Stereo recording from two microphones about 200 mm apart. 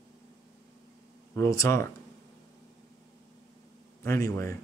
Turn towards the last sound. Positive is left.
turn(degrees=15)  # may be behind; listen again after turning